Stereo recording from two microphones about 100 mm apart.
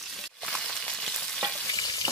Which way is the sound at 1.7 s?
40° left (ahead or behind).